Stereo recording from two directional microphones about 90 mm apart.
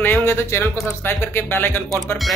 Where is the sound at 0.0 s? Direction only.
25° left (ahead or behind).